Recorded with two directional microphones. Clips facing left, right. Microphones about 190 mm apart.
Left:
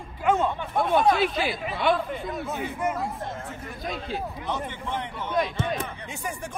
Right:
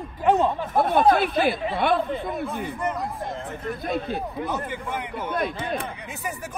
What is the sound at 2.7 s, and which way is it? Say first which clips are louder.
Speech: left 2 dB; 5° left (ahead or behind).